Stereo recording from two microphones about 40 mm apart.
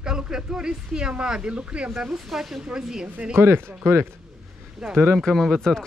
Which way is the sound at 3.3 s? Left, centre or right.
Right.